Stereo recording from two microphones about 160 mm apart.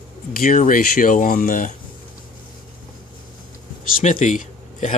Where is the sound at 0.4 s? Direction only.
55° left (ahead or behind).